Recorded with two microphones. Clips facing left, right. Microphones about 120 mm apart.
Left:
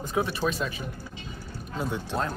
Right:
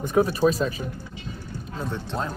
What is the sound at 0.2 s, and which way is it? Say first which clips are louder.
Speech: right 7 dB; 40° right (ahead or behind).